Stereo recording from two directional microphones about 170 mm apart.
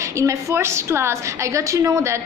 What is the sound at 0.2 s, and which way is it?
A woman's voice, 15° right (ahead or behind).